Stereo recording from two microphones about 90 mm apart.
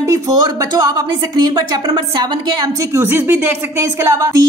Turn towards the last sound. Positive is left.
turn(degrees=-35)  # may be behind; listen again after turning